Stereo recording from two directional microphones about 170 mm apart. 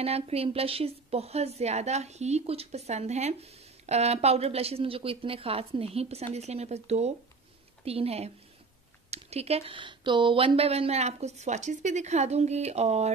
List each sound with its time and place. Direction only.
0.0 s a woman's voice: 35° right (ahead or behind)